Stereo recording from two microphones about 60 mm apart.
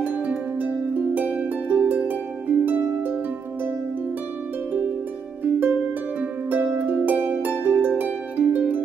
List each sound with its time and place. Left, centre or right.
0.3 s harp: right
5.4 s harp: right
6.5 s music: right
8.0 s harp: right